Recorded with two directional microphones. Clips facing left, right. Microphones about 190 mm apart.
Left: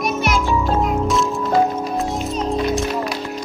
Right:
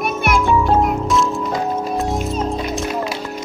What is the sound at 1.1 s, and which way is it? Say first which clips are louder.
Music: even; centre (ahead or behind).